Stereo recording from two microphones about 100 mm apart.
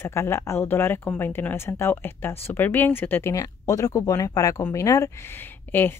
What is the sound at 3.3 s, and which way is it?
Speech, 35° left (ahead or behind).